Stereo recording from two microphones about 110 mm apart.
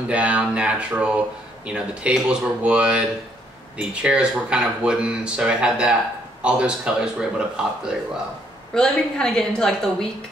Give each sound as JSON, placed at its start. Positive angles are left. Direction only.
{"t": 0.1, "sound": "speech", "side_deg": -10}
{"t": 8.7, "sound": "a woman's voice", "side_deg": 5}